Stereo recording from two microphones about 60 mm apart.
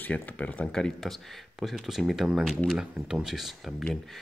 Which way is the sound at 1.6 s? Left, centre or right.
Centre.